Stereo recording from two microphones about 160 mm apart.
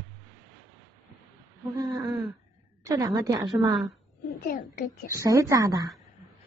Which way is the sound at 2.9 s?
20° right (ahead or behind).